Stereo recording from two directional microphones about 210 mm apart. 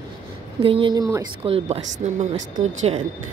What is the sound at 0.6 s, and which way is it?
Speech, 25° right (ahead or behind).